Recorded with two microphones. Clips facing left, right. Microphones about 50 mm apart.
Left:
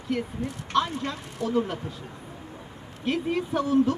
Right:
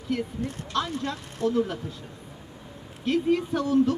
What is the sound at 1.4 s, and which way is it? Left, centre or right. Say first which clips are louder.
Speech: right 3 dB; right.